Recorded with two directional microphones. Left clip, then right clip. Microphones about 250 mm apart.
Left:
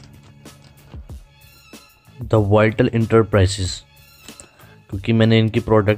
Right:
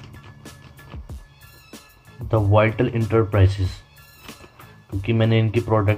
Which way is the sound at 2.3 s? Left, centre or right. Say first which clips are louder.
Left 3 dB; left.